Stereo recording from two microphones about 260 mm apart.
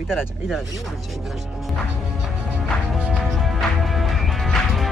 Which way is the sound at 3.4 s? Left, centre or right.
Centre.